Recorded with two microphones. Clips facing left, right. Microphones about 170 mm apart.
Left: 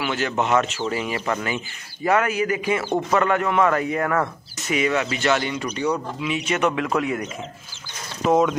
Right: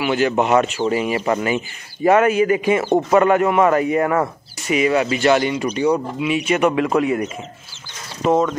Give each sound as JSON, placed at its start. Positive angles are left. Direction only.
{"t": 0.0, "sound": "a man's voice", "side_deg": -15}